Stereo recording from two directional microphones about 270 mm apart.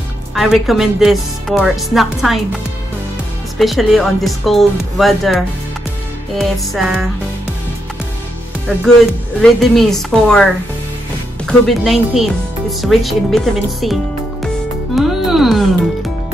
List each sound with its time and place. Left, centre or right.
0.3 s speech: centre
3.5 s speech: centre
9.4 s speech: centre
15.0 s music: centre